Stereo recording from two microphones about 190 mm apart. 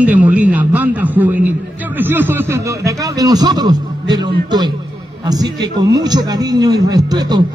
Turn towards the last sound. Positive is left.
turn(degrees=-20)  # may be behind; listen again after turning